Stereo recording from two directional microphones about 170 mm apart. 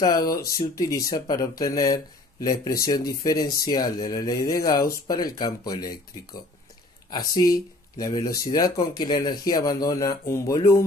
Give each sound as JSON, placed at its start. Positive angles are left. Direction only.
{"t": 0.0, "sound": "speech", "side_deg": 20}
{"t": 7.1, "sound": "speech", "side_deg": 25}